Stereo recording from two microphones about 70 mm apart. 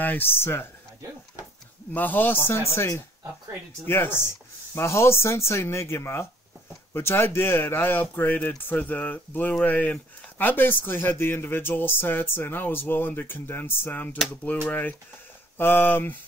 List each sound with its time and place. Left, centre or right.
0.0 s speech: left
2.0 s speech: left